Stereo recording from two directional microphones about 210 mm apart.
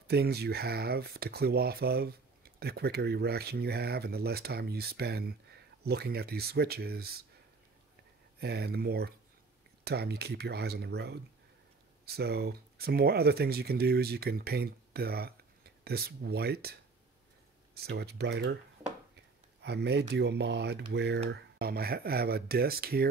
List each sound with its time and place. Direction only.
0.0 s speech: 50° right (ahead or behind)
8.4 s speech: 50° right (ahead or behind)
12.2 s speech: 50° right (ahead or behind)
17.8 s speech: 50° right (ahead or behind)
19.6 s speech: 55° right (ahead or behind)